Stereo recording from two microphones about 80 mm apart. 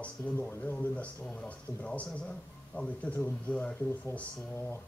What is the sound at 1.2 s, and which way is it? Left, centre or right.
Speech, centre.